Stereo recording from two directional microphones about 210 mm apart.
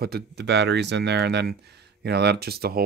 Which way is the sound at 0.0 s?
50° right (ahead or behind).